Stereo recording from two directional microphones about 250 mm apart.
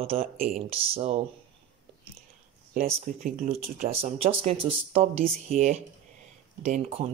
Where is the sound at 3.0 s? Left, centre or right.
Right.